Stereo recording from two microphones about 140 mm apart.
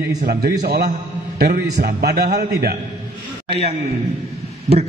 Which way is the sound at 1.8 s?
90° right.